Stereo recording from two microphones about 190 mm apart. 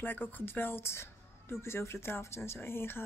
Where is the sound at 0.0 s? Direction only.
10° left (ahead or behind).